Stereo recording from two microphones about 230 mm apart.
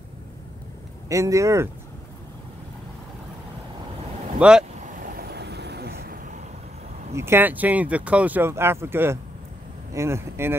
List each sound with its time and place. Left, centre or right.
1.0 s speech: centre
4.4 s speech: centre
5.3 s vehicle: right
7.2 s speech: centre